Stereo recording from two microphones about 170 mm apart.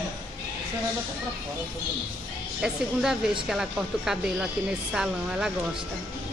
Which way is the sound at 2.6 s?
5° right (ahead or behind).